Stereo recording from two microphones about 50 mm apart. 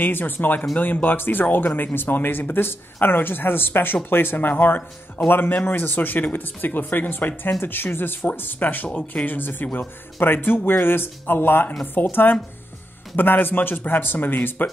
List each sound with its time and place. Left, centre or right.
0.0 s speech: left